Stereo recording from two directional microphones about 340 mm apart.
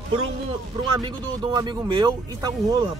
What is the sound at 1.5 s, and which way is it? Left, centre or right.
Speech, centre.